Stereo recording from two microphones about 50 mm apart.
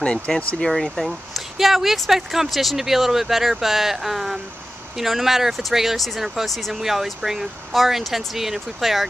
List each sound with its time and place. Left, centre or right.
0.0 s speech: centre
0.6 s speech: centre